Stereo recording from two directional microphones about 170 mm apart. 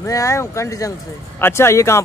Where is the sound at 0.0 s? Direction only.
20° left (ahead or behind).